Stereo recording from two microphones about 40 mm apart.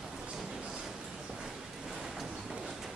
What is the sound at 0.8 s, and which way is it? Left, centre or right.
Train, centre.